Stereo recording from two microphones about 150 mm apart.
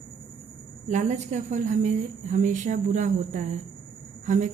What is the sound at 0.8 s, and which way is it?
A woman's voice, 55° right (ahead or behind).